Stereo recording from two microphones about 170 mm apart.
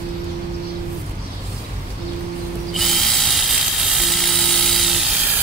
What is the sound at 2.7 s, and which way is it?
Drill, centre (ahead or behind).